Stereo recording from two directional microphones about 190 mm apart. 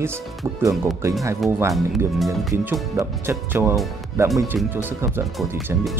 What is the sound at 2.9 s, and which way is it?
Speech, 15° right (ahead or behind).